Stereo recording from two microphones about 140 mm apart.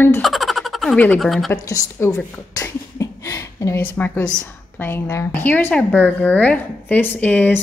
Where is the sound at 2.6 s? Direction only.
20° left (ahead or behind).